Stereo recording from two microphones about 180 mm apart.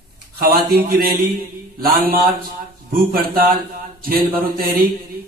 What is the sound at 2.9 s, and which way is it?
A man's voice, 55° right (ahead or behind).